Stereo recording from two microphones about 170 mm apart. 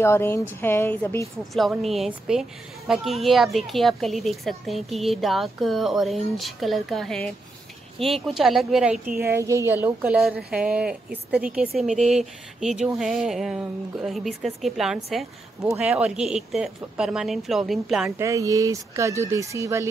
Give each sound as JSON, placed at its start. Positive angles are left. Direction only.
{"t": 0.0, "sound": "a woman's voice", "side_deg": 15}
{"t": 1.5, "sound": "speech", "side_deg": 0}
{"t": 9.2, "sound": "speech", "side_deg": -15}
{"t": 18.1, "sound": "speech", "side_deg": -20}